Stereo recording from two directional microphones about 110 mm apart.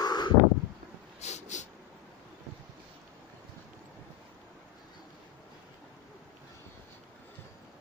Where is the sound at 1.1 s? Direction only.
90° left.